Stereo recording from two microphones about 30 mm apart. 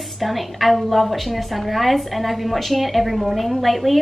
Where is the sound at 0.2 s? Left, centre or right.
Centre.